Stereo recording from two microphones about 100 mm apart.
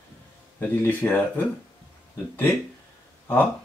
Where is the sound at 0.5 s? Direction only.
20° left (ahead or behind).